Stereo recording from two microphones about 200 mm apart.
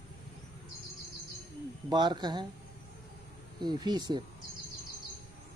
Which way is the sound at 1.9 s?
20° right (ahead or behind).